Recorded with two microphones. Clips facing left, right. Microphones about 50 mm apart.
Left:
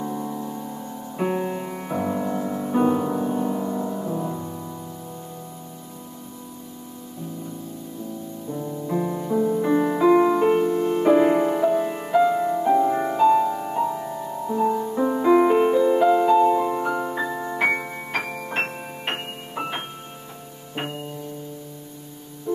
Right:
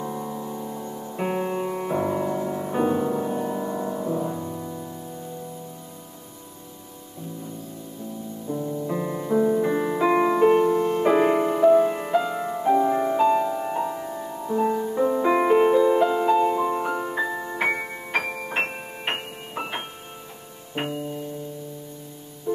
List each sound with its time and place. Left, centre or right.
0.0 s music: centre
8.5 s music: centre
9.1 s music: centre
9.6 s music: centre
10.0 s music: centre
11.1 s music: centre
11.4 s music: centre
16.1 s keyboard: centre
17.6 s music: centre